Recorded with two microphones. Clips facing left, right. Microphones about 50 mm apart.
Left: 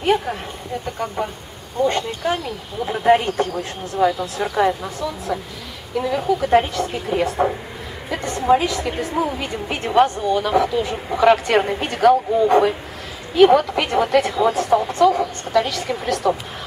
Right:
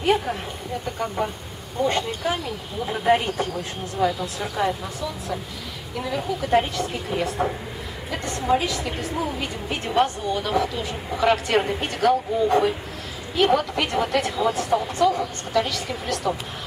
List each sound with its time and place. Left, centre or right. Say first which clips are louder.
0.0 s a woman's voice: left 2 dB; centre
4.0 s a woman's voice: left 5 dB; centre